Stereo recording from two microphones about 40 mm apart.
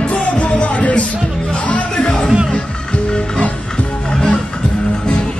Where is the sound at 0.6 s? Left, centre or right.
Left.